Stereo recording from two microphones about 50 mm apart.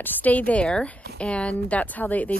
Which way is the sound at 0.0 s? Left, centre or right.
Left.